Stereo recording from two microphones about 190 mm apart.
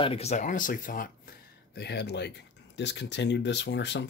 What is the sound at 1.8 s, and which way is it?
Speech, 60° left (ahead or behind).